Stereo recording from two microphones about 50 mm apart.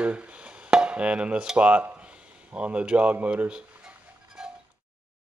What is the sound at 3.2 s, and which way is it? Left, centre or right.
Speech, right.